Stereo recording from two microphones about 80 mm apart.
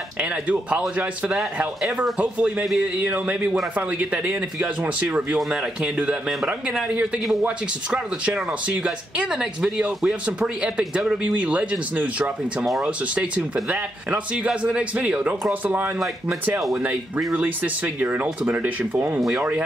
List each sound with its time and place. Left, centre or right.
0.2 s speech: centre
8.6 s speech: centre
17.4 s speech: centre